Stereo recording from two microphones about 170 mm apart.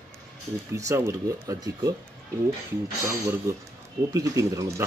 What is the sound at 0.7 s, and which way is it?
Speech, 15° right (ahead or behind).